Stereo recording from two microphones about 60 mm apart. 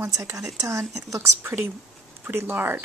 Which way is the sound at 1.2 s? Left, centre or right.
Right.